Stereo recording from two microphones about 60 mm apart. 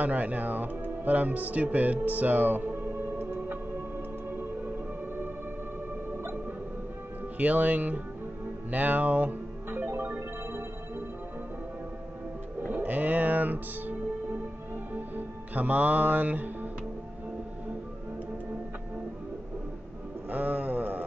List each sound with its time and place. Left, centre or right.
0.0 s speech: right
2.0 s music: right
6.1 s music: right
7.3 s speech: right
8.6 s music: right
12.5 s music: right
15.0 s music: right
20.2 s a sound: right